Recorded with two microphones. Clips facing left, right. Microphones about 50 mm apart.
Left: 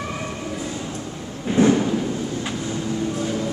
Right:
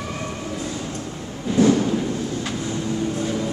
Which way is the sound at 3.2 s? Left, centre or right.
Centre.